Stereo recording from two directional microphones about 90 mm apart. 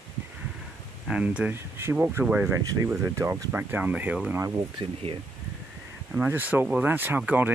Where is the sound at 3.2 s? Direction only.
40° right (ahead or behind).